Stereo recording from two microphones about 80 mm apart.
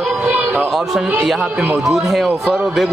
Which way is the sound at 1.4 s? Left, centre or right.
Centre.